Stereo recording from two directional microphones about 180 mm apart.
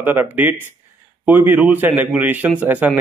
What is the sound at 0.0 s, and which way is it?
Speech, 10° right (ahead or behind).